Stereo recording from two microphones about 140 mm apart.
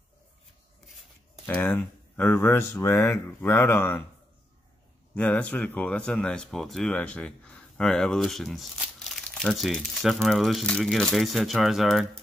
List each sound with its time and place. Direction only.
1.4 s speech: 15° left (ahead or behind)
5.1 s speech: 10° left (ahead or behind)